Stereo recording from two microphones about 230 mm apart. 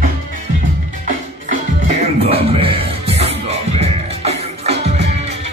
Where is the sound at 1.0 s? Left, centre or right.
Right.